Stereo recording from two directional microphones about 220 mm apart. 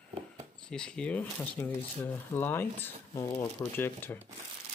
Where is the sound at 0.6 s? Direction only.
5° left (ahead or behind).